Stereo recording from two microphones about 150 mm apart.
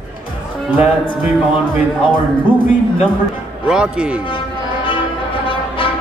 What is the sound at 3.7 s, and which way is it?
Speech, 5° right (ahead or behind).